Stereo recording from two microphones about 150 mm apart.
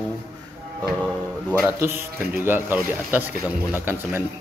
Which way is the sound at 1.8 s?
15° right (ahead or behind).